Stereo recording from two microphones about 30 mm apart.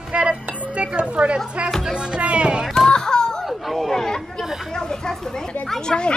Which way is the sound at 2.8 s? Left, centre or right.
Left.